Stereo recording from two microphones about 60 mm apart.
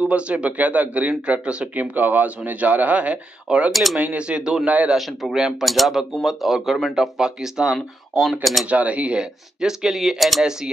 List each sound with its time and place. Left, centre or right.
0.0 s speech: right
1.8 s speech: right
3.7 s speech: centre
4.0 s speech: centre
4.6 s speech: right
4.9 s speech: centre
8.6 s speech: right; by 10.7 s centre